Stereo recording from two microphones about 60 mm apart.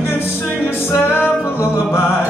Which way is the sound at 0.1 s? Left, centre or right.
Left.